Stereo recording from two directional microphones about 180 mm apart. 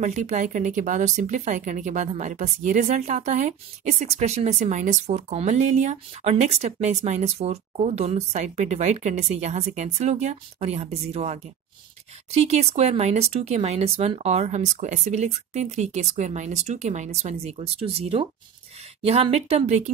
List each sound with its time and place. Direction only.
0.0 s speech: 40° right (ahead or behind)